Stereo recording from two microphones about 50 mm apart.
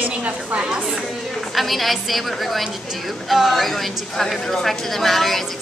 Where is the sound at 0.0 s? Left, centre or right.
Right.